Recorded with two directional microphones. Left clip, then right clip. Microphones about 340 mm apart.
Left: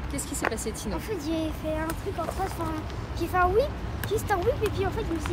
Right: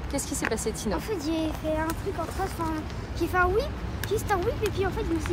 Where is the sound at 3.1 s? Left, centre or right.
Centre.